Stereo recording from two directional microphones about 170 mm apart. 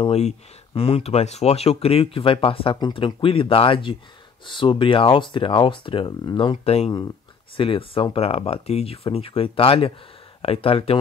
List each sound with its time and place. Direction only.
0.0 s speech: 35° left (ahead or behind)